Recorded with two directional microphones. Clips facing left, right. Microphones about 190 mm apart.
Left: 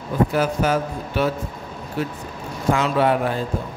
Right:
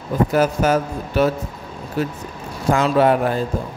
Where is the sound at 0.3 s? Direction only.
45° right (ahead or behind).